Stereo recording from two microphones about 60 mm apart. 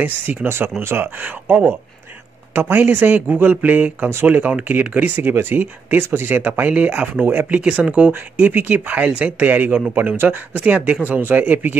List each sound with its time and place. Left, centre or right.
0.0 s speech: right
0.5 s speech: right; by 7.1 s centre
7.2 s speech: right
7.9 s speech: right